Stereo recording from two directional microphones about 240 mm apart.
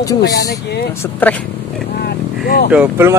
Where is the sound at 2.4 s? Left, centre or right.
Left.